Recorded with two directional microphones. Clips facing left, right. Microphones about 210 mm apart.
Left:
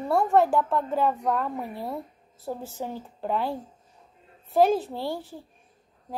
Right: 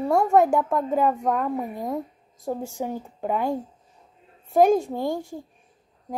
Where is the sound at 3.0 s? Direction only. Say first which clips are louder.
Right 2 dB; 10° right (ahead or behind).